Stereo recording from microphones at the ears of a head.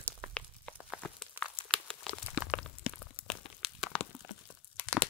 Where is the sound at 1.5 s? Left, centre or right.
Left.